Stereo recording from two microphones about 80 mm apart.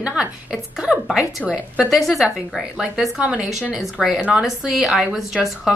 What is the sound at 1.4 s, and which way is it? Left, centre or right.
Speech, centre.